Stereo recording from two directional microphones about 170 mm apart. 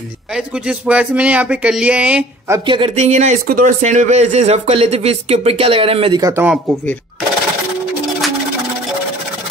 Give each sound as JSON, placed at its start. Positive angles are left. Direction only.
{"t": 0.7, "sound": "speech", "side_deg": -5}
{"t": 2.6, "sound": "speech", "side_deg": -30}
{"t": 3.0, "sound": "speech", "side_deg": -45}
{"t": 6.3, "sound": "speech", "side_deg": -10}